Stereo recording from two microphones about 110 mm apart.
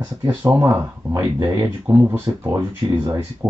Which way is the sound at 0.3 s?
20° right (ahead or behind).